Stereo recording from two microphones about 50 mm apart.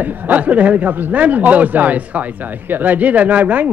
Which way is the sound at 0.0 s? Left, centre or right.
Right.